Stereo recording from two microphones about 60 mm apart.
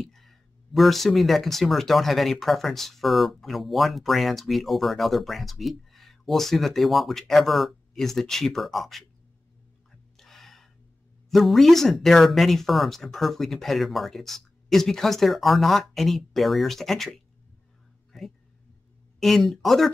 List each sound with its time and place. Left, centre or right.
0.0 s speech: centre
9.8 s music: centre
11.2 s speech: centre
18.1 s a sound: centre
19.1 s speech: centre